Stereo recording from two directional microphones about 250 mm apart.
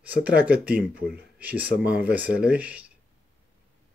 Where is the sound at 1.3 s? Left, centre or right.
Centre.